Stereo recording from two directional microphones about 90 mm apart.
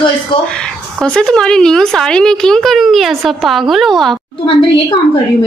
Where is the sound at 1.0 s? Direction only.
5° left (ahead or behind).